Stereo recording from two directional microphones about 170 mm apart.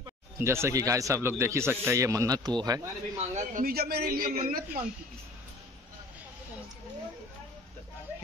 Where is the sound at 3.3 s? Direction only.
50° right (ahead or behind).